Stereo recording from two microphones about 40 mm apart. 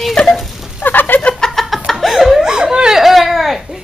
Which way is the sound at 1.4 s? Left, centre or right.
Centre.